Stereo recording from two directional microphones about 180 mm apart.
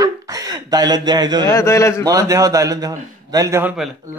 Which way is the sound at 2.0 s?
20° right (ahead or behind).